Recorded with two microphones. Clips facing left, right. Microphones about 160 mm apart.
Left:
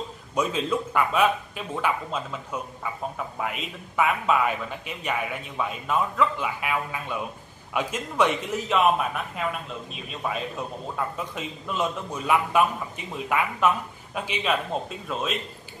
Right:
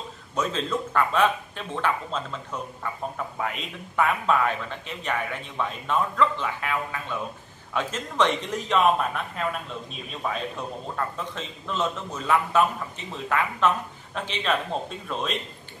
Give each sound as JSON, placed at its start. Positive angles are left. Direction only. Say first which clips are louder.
{"t": 0.4, "sound": "speech", "louder": "left 2 dB", "side_deg": 10}
{"t": 11.0, "sound": "speech", "louder": "left 1 dB", "side_deg": 10}